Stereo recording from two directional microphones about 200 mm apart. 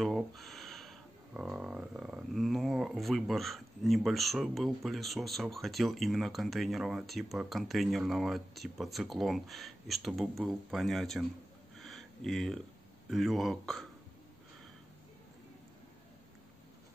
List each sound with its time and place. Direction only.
0.0 s speech: centre (ahead or behind)
11.8 s a sound: centre (ahead or behind)
13.1 s speech: centre (ahead or behind)